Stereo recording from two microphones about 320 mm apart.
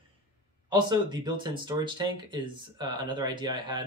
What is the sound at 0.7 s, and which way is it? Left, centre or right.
Speech, centre.